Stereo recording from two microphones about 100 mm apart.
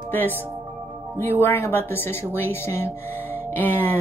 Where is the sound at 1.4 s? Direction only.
20° left (ahead or behind).